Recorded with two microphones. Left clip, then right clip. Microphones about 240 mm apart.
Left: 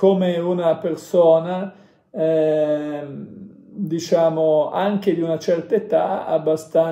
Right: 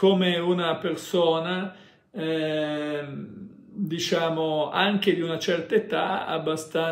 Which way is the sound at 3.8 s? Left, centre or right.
Centre.